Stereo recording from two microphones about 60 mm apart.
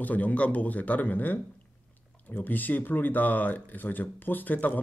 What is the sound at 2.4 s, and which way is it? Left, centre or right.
Speech, left.